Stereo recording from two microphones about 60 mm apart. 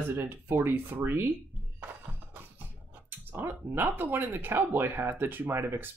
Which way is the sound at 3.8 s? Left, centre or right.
Right.